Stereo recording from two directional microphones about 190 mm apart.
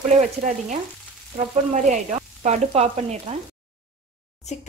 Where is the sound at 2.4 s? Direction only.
35° right (ahead or behind).